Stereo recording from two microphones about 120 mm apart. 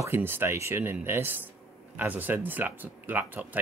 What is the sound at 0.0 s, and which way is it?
Speech, 20° right (ahead or behind).